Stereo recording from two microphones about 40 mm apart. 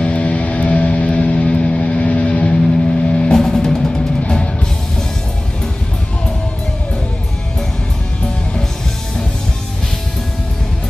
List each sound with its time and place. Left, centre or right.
0.0 s music: left
1.8 s vehicle: left; by 3.9 s centre